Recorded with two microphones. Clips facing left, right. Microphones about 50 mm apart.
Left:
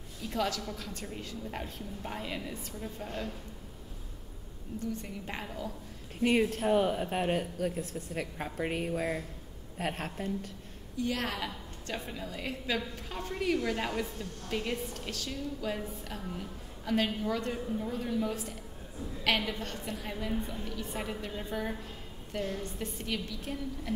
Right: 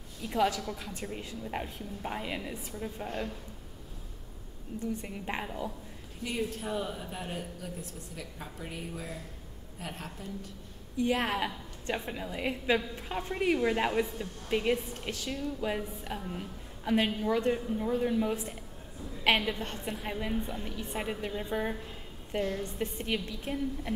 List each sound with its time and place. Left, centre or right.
0.3 s a woman's voice: centre
4.7 s a woman's voice: right
5.0 s a woman's voice: centre
6.2 s speech: left
11.0 s a woman's voice: right